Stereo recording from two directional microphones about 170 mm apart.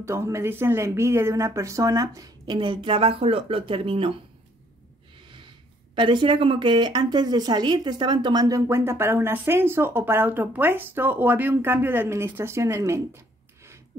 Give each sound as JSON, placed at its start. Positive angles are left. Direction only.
{"t": 0.0, "sound": "speech", "side_deg": -15}
{"t": 5.9, "sound": "speech", "side_deg": -30}